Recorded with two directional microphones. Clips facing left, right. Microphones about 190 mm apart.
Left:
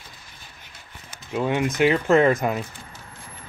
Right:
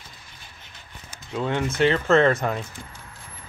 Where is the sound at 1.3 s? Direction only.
15° left (ahead or behind).